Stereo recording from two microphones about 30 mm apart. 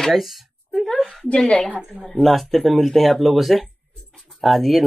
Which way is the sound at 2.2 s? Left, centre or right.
Centre.